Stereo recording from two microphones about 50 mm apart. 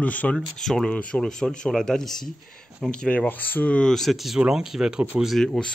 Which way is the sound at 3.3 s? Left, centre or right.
Left.